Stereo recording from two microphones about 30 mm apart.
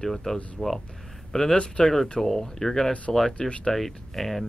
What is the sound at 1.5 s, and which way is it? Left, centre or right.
Speech, left.